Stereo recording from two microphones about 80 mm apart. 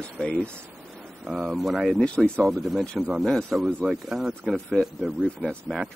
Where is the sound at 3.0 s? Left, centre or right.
Centre.